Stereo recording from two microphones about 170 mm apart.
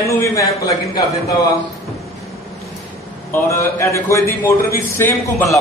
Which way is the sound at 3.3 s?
15° left (ahead or behind).